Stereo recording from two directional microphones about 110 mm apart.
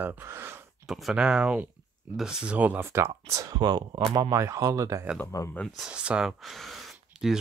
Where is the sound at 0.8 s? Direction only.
Centre (ahead or behind).